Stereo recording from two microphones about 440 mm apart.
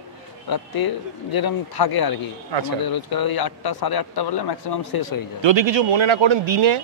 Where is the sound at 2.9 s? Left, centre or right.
Left.